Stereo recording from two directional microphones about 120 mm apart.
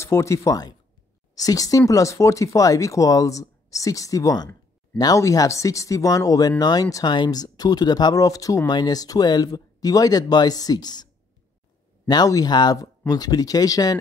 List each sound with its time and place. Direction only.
0.0 s speech: 25° left (ahead or behind)
12.1 s speech: 35° left (ahead or behind)